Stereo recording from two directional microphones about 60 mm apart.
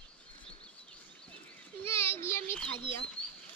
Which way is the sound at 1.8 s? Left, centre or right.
Left.